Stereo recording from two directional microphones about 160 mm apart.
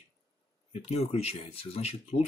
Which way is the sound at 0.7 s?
40° left (ahead or behind).